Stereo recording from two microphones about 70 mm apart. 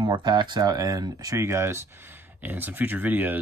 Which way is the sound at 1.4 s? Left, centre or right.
Right.